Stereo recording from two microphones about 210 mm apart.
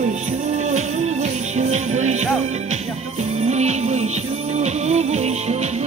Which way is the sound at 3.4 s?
30° right (ahead or behind).